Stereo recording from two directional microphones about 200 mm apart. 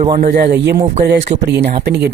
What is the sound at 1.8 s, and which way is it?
Speech, 55° right (ahead or behind).